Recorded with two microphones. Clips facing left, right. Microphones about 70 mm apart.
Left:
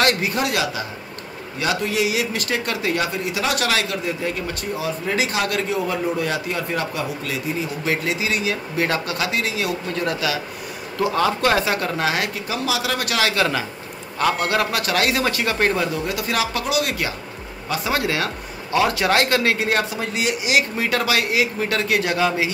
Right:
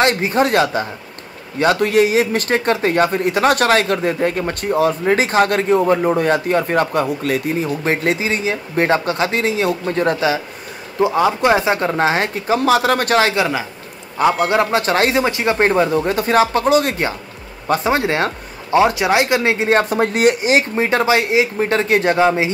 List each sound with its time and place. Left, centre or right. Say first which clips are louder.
0.0 s speech: right 5 dB; right
11.0 s speech: right 5 dB; right
13.3 s speech: right 2 dB; centre
19.8 s speech: right 9 dB; right